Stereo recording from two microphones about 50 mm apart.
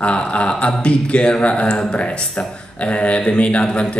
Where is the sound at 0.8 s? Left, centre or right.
Left.